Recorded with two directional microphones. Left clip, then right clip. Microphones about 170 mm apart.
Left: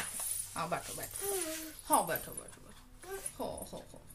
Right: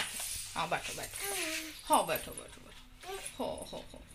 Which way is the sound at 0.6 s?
20° right (ahead or behind).